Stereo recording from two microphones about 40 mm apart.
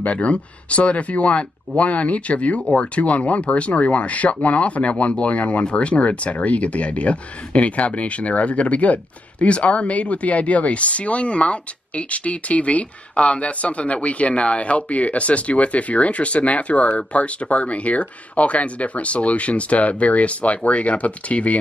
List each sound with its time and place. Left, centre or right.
0.0 s speech: left